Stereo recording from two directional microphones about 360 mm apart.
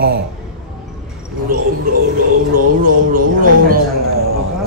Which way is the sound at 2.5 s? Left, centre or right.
Right.